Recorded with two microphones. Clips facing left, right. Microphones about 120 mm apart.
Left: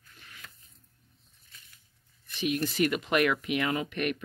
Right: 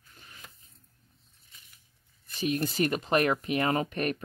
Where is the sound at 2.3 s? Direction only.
40° right (ahead or behind).